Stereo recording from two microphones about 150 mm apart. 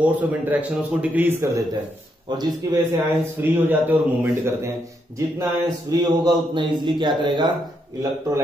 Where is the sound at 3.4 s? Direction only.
15° right (ahead or behind).